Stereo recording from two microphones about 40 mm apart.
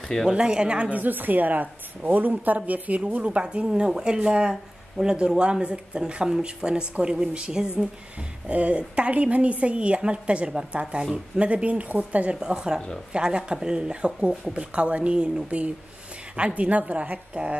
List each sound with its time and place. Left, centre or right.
0.3 s speech: centre
0.8 s a woman's voice: right
3.6 s speech: centre
5.0 s speech: centre
5.4 s speech: right
8.5 s a woman's voice: right
12.4 s a woman's voice: centre